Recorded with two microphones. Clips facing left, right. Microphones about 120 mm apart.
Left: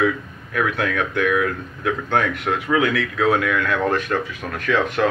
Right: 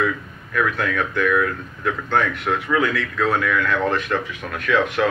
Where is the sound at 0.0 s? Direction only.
55° left (ahead or behind).